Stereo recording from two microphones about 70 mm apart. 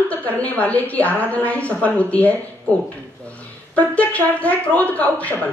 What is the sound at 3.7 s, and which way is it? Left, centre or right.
A woman's voice, left.